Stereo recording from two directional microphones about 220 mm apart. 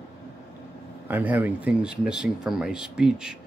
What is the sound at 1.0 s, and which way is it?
Speech, 10° right (ahead or behind).